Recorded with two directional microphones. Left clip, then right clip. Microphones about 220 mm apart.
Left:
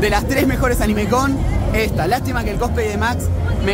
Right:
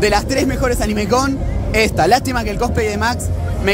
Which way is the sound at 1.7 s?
25° right (ahead or behind).